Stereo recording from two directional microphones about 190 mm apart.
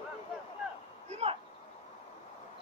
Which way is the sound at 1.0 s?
35° right (ahead or behind).